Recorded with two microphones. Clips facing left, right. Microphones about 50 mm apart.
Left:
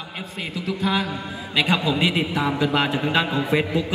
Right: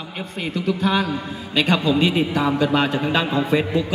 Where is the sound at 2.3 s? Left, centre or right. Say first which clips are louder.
Right 3 dB; left.